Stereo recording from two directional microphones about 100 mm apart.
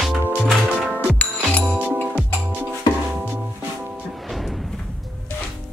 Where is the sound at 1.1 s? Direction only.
15° left (ahead or behind).